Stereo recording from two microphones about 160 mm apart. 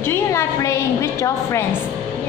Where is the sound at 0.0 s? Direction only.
15° left (ahead or behind).